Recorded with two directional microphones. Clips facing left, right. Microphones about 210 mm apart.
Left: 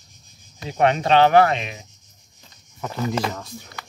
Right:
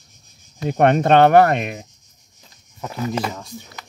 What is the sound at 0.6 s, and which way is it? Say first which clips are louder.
Speech: right 4 dB; 50° right (ahead or behind).